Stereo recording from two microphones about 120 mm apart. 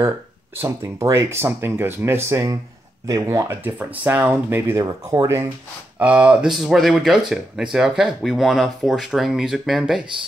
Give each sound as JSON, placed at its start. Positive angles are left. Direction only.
{"t": 0.6, "sound": "speech", "side_deg": -25}
{"t": 5.9, "sound": "speech", "side_deg": -10}